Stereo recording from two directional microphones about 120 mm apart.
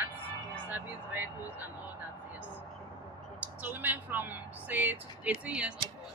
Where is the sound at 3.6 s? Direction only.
15° right (ahead or behind).